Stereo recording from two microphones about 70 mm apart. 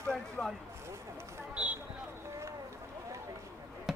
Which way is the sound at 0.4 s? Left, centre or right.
Left.